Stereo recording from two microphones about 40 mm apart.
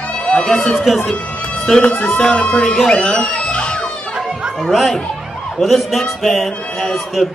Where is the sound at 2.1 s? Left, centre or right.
Centre.